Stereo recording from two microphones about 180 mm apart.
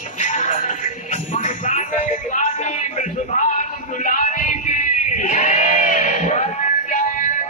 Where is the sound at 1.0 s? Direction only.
45° left (ahead or behind).